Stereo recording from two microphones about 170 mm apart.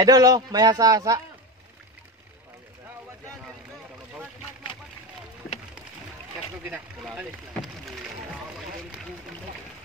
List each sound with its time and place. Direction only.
0.0 s a man's voice: 20° right (ahead or behind)
6.7 s speech: 5° right (ahead or behind)